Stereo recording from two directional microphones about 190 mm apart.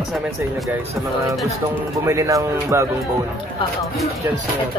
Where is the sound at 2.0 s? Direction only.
15° right (ahead or behind).